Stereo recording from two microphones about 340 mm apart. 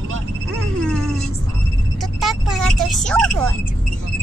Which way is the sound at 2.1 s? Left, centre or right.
Centre.